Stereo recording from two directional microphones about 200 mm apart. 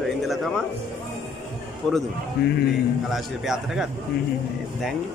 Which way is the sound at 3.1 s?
Centre (ahead or behind).